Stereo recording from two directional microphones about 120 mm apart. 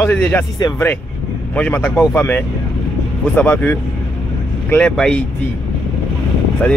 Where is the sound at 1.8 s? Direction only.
10° left (ahead or behind).